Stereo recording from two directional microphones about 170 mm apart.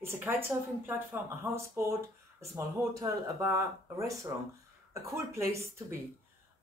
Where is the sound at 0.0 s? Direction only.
15° right (ahead or behind).